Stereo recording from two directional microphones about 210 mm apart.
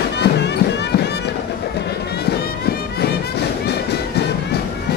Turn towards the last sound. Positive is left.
turn(degrees=50)  # may be behind; listen again after turning